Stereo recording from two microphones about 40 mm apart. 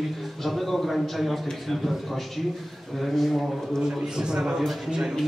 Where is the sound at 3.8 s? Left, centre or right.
Centre.